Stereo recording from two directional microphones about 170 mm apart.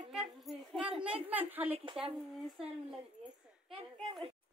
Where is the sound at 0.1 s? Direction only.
Centre (ahead or behind).